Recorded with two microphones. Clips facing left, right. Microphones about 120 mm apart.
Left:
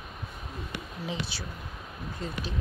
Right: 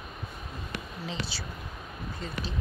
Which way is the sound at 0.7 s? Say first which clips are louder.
Left 2 dB; 15° left (ahead or behind).